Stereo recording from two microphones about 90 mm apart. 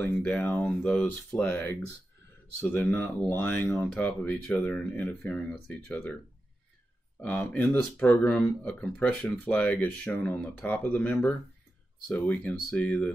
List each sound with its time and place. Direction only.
0.0 s speech: 20° left (ahead or behind)
1.5 s speech: 25° left (ahead or behind)
3.7 s speech: 10° left (ahead or behind)
7.2 s speech: 20° left (ahead or behind)